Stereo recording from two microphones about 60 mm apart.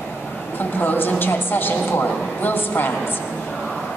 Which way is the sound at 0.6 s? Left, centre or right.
Left.